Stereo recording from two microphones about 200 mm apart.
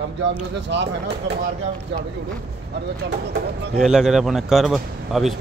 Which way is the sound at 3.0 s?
55° right (ahead or behind).